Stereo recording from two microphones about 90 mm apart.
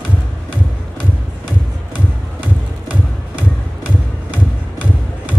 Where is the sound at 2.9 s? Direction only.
15° right (ahead or behind).